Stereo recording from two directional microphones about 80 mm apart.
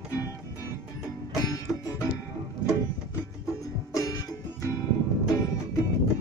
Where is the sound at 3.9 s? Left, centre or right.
Left.